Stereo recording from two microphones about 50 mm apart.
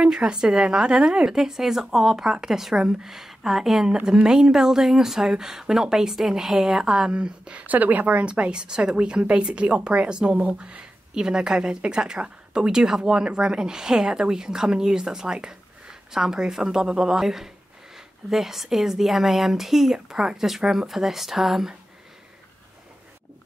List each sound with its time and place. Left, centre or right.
0.0 s speech: centre
3.9 s speech: centre
7.6 s speech: right; by 21.7 s centre